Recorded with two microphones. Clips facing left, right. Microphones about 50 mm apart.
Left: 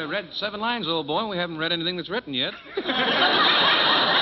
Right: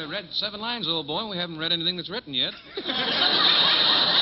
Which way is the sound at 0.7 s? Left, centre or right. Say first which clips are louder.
Left 3 dB; left.